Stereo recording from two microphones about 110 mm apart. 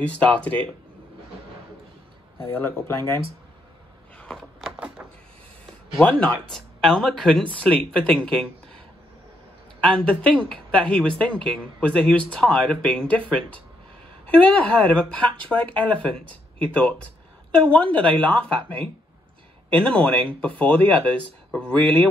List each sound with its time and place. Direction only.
0.0 s speech: 10° left (ahead or behind)
2.4 s speech: 25° left (ahead or behind)
4.2 s a sound: 5° left (ahead or behind)
4.7 s a sound: 10° right (ahead or behind)
5.9 s speech: 10° left (ahead or behind)
9.8 s speech: 10° left (ahead or behind)
16.3 s speech: 50° right (ahead or behind)
16.7 s speech: 10° left (ahead or behind)
19.7 s speech: 10° left (ahead or behind)